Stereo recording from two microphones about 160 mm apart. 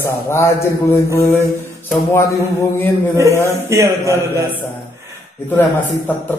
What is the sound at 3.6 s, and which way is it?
Mantra, 20° right (ahead or behind).